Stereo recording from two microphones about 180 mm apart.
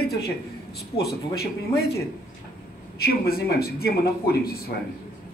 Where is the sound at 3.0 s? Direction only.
60° left (ahead or behind).